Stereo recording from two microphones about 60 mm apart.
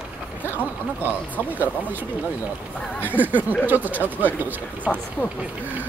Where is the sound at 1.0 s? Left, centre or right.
Right.